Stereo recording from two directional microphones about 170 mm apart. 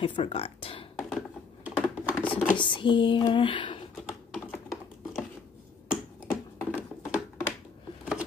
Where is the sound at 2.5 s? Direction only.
30° left (ahead or behind).